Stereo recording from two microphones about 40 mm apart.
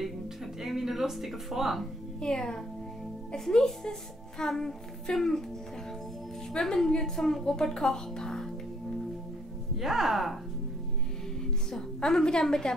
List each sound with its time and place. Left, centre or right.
0.6 s speech: centre
2.1 s speech: centre
3.3 s child singing: centre
6.6 s child singing: centre
7.2 s speech: centre
7.4 s child singing: centre
9.8 s speech: centre
11.7 s child singing: centre